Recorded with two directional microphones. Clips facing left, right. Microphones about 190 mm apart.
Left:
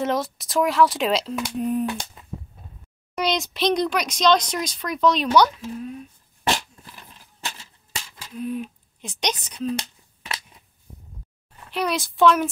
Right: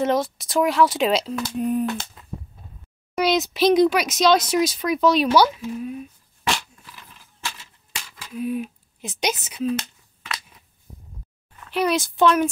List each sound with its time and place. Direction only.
0.0 s speech: centre (ahead or behind)
3.2 s speech: 5° right (ahead or behind)
6.5 s a sound: 35° left (ahead or behind)
8.4 s speech: 10° right (ahead or behind)
11.7 s speech: centre (ahead or behind)